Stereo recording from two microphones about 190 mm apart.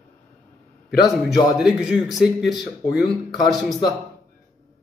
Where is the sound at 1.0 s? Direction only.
Centre (ahead or behind).